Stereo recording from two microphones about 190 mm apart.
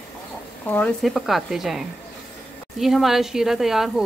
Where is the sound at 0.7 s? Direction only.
5° left (ahead or behind).